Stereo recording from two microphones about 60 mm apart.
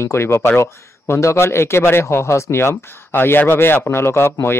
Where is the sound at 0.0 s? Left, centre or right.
Left.